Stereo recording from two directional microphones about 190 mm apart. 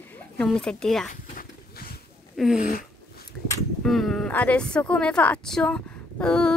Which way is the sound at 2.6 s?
45° left (ahead or behind).